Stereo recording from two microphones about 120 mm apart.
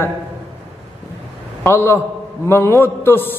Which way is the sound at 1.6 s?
20° left (ahead or behind).